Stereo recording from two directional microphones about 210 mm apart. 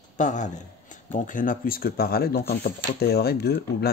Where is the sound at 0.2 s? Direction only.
35° left (ahead or behind).